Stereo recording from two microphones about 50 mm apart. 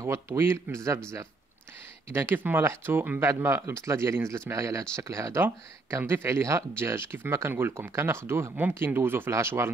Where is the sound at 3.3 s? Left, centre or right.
Right.